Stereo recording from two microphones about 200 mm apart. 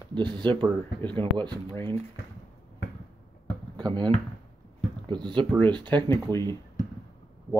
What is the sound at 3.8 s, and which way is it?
Speech, 20° right (ahead or behind).